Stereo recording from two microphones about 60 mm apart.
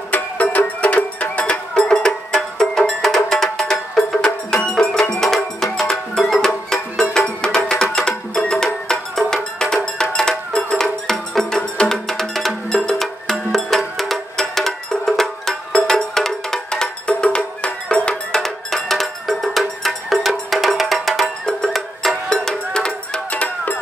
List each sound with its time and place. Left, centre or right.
0.1 s music: left